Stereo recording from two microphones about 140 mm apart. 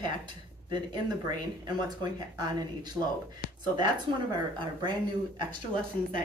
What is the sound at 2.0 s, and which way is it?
Speech, 30° right (ahead or behind).